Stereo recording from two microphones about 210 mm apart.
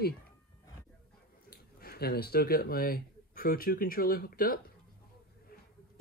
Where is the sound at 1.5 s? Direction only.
50° left (ahead or behind).